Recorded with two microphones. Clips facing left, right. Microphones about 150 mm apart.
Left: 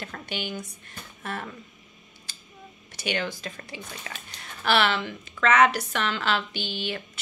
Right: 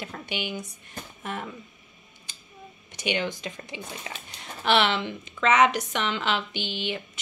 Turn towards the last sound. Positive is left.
turn(degrees=-20)  # may be behind; listen again after turning